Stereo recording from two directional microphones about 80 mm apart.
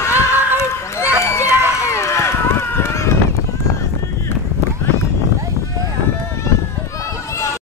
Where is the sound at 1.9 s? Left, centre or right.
Left.